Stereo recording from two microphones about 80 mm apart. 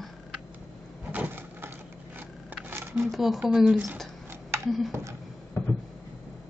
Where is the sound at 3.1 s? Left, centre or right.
Centre.